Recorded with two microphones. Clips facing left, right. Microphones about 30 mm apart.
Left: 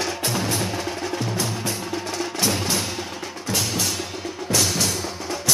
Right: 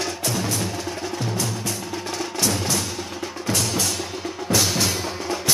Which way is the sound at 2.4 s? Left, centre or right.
Centre.